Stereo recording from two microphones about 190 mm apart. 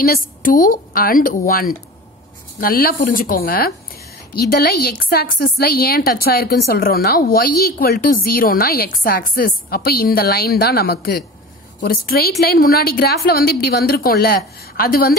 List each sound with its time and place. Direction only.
0.0 s a woman's voice: 50° left (ahead or behind)